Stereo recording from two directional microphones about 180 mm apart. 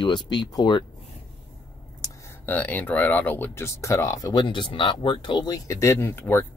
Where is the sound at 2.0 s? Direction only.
10° left (ahead or behind).